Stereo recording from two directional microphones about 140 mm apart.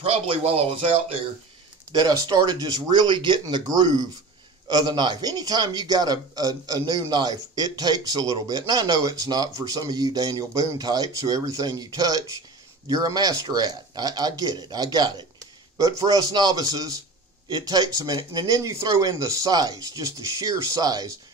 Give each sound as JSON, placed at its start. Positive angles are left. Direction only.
{"t": 0.0, "sound": "speech", "side_deg": -45}
{"t": 1.9, "sound": "a man's voice", "side_deg": -30}